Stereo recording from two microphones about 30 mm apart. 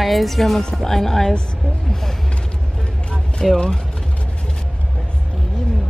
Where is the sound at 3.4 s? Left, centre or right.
Centre.